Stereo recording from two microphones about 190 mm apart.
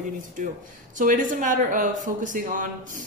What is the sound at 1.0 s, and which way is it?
Speech, 45° right (ahead or behind).